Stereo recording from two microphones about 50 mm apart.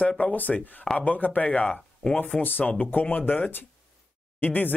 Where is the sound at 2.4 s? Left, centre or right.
Left.